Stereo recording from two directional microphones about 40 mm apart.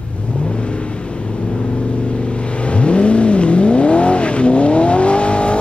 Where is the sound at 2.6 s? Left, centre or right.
Left.